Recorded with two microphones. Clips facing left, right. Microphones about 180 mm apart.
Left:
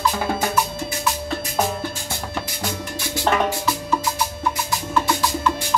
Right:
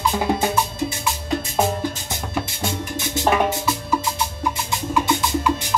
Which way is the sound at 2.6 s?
25° right (ahead or behind).